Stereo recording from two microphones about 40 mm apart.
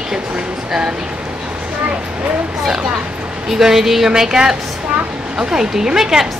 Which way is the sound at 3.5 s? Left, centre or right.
Centre.